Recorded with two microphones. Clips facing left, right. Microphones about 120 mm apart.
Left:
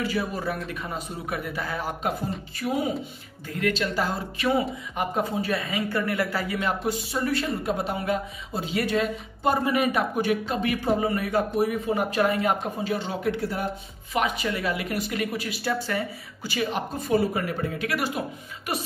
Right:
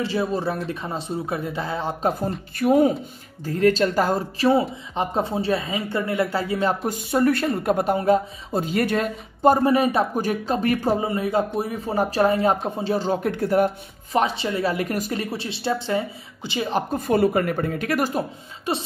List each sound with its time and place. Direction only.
0.0 s a woman's voice: 25° right (ahead or behind)
2.5 s speech: 50° right (ahead or behind)
3.4 s a woman's voice: 35° right (ahead or behind)
6.9 s speech: 50° right (ahead or behind)
11.0 s speech: 25° right (ahead or behind); by 13.7 s 50° right (ahead or behind)
14.1 s a woman's voice: 30° right (ahead or behind)
17.0 s speech: 55° right (ahead or behind)
18.7 s a woman's voice: 30° right (ahead or behind)